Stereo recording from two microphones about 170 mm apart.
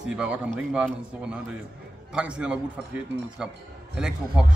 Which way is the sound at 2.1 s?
5° right (ahead or behind).